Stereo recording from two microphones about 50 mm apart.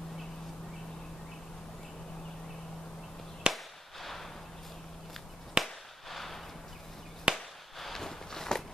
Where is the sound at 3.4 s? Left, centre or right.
Centre.